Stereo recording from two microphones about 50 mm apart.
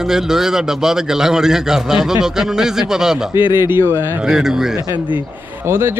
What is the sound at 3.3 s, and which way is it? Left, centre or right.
Speech, right.